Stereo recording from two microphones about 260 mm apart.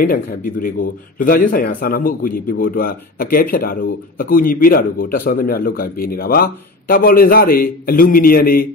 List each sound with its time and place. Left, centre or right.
0.0 s a man's voice: left